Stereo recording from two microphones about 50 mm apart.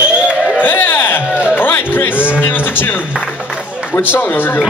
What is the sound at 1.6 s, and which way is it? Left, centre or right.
A man's voice, left.